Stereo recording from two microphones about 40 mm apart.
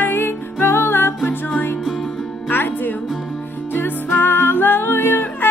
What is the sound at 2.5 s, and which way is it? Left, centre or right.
Music, left.